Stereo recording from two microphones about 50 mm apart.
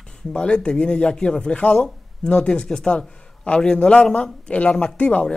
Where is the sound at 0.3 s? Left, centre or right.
Centre.